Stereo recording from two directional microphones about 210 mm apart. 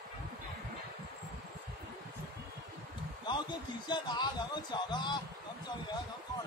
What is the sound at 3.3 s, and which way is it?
Speech, 20° left (ahead or behind).